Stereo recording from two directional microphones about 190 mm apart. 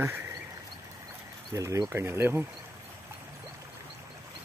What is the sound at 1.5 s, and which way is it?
Speech, 15° right (ahead or behind).